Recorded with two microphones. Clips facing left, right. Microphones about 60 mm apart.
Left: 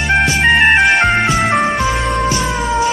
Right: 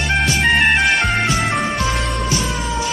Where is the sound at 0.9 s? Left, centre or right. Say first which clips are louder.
Left 5 dB; left.